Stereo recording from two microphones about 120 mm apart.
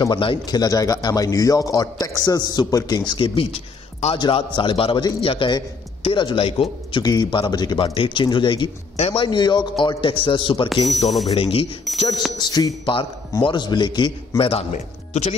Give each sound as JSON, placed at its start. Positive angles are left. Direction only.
{"t": 0.0, "sound": "a man's voice", "side_deg": 45}
{"t": 7.0, "sound": "speech", "side_deg": 35}
{"t": 8.9, "sound": "a man's voice", "side_deg": 55}
{"t": 10.7, "sound": "speech", "side_deg": 0}
{"t": 11.2, "sound": "a man's voice", "side_deg": 50}
{"t": 12.4, "sound": "speech", "side_deg": 35}
{"t": 14.7, "sound": "speech", "side_deg": 70}